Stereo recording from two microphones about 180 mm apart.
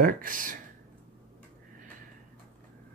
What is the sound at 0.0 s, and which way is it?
Speech, 50° right (ahead or behind).